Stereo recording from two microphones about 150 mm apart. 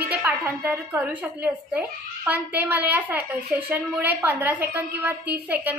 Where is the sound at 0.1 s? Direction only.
10° right (ahead or behind).